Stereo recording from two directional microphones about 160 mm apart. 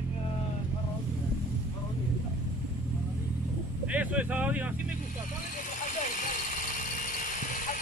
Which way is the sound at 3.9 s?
10° right (ahead or behind).